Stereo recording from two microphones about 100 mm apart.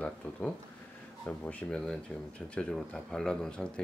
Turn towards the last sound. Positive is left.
turn(degrees=10)  # may be behind; listen again after turning